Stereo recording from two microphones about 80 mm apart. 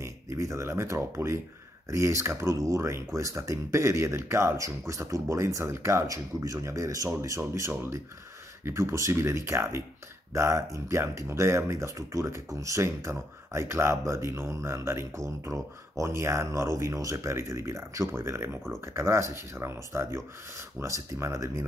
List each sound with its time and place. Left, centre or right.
0.0 s speech: right